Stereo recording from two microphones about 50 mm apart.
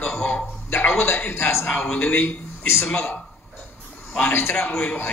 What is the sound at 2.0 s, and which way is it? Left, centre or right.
Speech, left.